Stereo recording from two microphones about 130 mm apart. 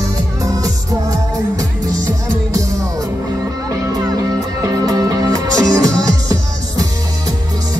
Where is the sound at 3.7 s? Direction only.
25° right (ahead or behind).